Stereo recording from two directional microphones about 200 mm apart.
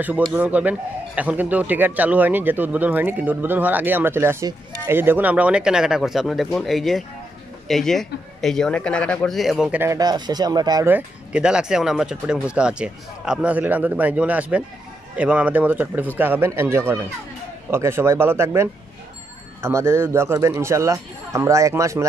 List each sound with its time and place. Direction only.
0.3 s a man's voice: 5° right (ahead or behind)